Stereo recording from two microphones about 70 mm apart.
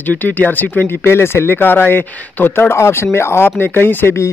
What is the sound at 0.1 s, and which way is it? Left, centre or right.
Speech, left.